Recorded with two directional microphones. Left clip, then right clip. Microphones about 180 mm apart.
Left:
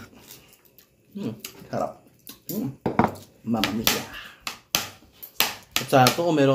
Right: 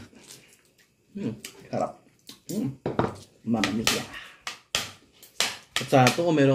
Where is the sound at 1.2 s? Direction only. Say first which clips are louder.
Left 1 dB; 10° right (ahead or behind).